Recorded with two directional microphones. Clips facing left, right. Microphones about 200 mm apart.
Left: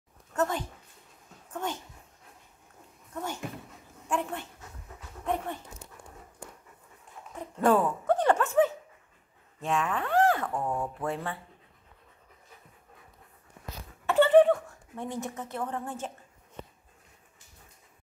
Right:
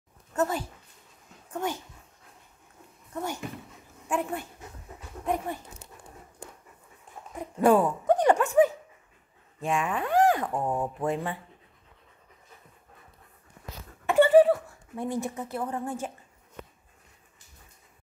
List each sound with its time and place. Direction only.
0.3 s speech: 5° right (ahead or behind)
4.1 s speech: 10° right (ahead or behind)
7.3 s speech: 10° right (ahead or behind)
14.0 s a sound: 10° right (ahead or behind)